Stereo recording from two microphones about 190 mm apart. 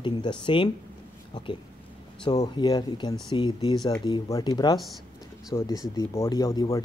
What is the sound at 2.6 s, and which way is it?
A man's voice, 20° left (ahead or behind).